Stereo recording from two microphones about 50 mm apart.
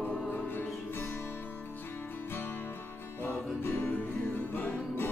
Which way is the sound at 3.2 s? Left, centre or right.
Left.